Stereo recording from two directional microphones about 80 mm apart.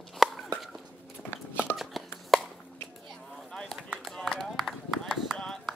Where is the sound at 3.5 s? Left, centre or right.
Centre.